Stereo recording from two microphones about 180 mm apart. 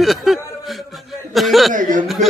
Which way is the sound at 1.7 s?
45° right (ahead or behind).